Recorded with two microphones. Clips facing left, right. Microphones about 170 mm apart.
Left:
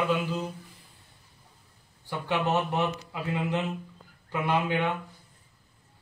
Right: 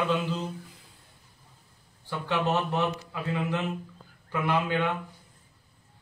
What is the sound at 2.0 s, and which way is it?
A man's voice, 15° left (ahead or behind).